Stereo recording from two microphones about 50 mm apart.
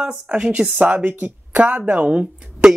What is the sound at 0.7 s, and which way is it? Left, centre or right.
Speech, right.